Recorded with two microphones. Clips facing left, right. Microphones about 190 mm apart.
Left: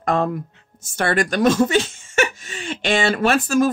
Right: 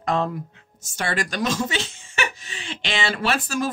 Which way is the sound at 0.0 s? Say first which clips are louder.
Left 3 dB; 50° left (ahead or behind).